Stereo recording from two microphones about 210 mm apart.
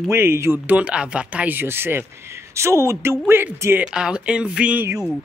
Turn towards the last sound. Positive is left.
turn(degrees=-5)  # may be behind; listen again after turning